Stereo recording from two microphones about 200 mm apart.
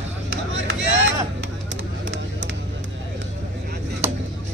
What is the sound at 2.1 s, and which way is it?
Vehicle, 65° right (ahead or behind).